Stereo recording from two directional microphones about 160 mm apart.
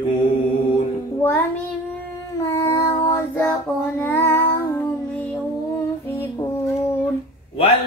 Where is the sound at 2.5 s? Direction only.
20° left (ahead or behind).